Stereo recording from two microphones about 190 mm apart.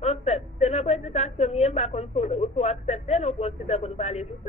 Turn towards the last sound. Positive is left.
turn(degrees=35)  # may be behind; listen again after turning